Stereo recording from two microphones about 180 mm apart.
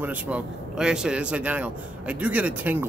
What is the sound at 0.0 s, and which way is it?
Speech, 10° right (ahead or behind).